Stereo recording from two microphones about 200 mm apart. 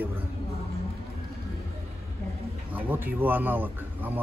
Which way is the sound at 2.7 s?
10° right (ahead or behind).